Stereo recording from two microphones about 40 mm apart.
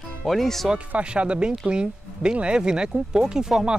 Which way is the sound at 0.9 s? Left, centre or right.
Right.